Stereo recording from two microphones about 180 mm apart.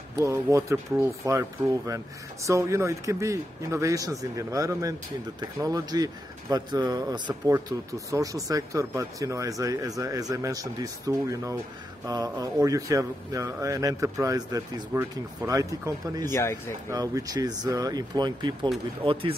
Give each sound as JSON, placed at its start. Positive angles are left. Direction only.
{"t": 0.1, "sound": "speech", "side_deg": -15}
{"t": 2.4, "sound": "speech", "side_deg": -15}
{"t": 16.3, "sound": "speech", "side_deg": 15}
{"t": 16.9, "sound": "speech", "side_deg": -20}